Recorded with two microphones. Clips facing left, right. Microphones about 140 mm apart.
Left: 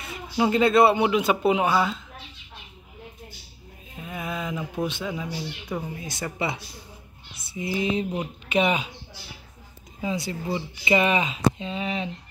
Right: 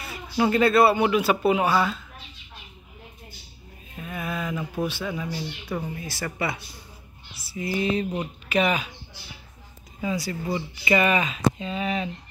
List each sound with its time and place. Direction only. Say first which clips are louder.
0.4 s speech: even; 15° left (ahead or behind)
3.9 s mantra: right 1 dB; 15° left (ahead or behind)
4.8 s speech: even; 15° left (ahead or behind)
7.5 s speech: right 1 dB; 15° left (ahead or behind)
8.5 s speech: left 1 dB; 25° left (ahead or behind)
10.0 s speech: right 1 dB; 25° left (ahead or behind)